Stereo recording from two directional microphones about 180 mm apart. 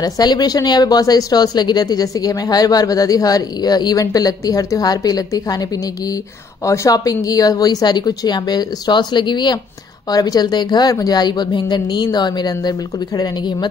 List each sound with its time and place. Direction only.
0.0 s speech: 20° left (ahead or behind)